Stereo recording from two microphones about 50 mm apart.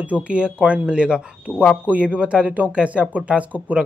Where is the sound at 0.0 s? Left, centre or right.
Right.